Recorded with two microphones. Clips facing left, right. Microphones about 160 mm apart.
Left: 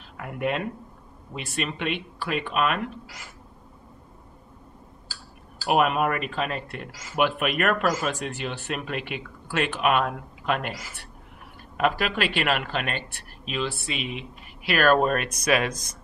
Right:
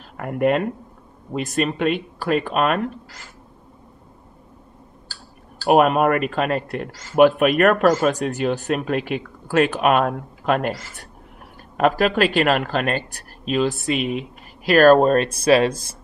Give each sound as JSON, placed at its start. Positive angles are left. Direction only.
{"t": 0.2, "sound": "speech", "side_deg": -50}
{"t": 5.7, "sound": "speech", "side_deg": -45}